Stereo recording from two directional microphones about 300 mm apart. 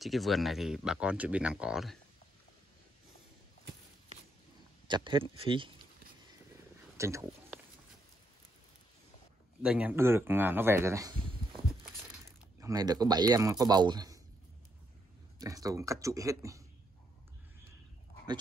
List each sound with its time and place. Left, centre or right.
0.0 s speech: centre
4.8 s speech: centre
7.0 s a sound: centre
9.6 s speech: centre
12.5 s speech: centre
15.3 s speech: centre